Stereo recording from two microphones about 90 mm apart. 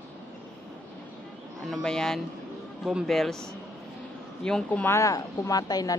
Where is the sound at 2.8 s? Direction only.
10° right (ahead or behind).